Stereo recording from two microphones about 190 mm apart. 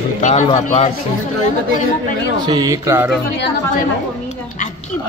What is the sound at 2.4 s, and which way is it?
Speech, 20° right (ahead or behind).